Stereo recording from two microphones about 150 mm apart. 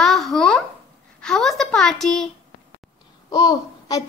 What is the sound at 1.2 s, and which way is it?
A woman's voice, 5° left (ahead or behind).